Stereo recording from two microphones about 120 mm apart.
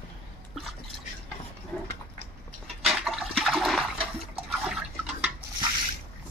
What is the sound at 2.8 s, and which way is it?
Toilet flush, 5° right (ahead or behind).